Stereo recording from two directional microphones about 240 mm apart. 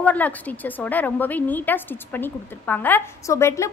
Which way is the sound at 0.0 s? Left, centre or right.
Centre.